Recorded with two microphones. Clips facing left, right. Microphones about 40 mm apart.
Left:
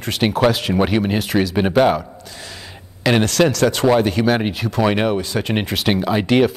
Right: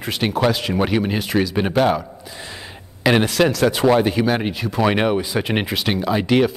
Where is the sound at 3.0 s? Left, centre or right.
Centre.